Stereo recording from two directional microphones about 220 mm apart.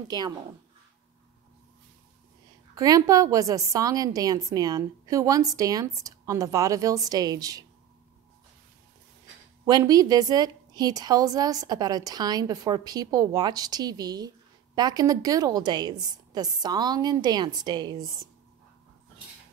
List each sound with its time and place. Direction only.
2.7 s a woman's voice: 15° right (ahead or behind)
9.7 s a woman's voice: 15° right (ahead or behind)